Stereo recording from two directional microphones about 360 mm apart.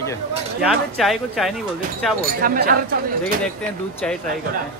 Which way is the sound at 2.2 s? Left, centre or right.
Right.